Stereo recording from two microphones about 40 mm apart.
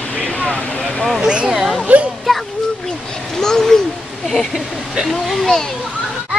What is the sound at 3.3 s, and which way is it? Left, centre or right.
Speech, centre.